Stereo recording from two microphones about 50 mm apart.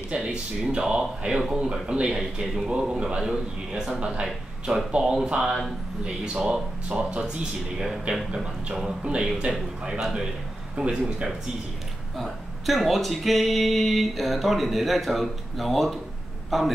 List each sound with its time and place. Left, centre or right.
0.1 s a man's voice: centre
12.2 s speech: centre